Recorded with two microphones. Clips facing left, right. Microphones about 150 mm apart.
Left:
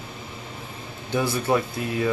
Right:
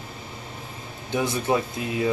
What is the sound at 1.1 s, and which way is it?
Speech, 20° right (ahead or behind).